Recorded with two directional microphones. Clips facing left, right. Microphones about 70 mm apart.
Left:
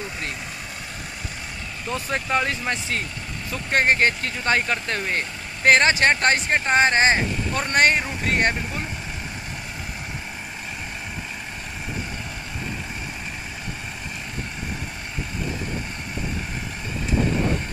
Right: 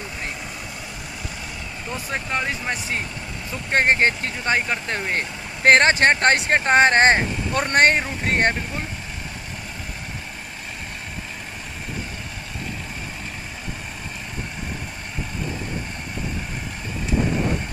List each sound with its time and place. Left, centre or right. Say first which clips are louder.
2.0 s speech: left 3 dB; centre
2.4 s speech: left 1 dB; centre
3.7 s speech: right 1 dB; right
5.1 s speech: right 1 dB; right